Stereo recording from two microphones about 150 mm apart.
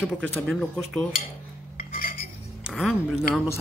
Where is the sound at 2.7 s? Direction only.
5° left (ahead or behind).